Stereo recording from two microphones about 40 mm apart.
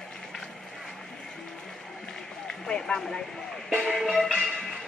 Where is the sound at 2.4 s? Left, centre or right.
Centre.